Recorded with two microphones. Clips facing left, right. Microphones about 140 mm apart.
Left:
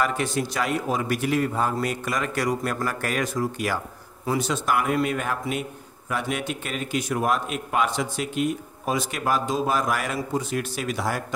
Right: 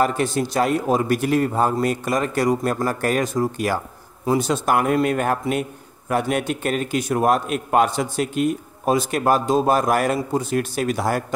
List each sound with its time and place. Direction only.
0.0 s a man's voice: 35° right (ahead or behind)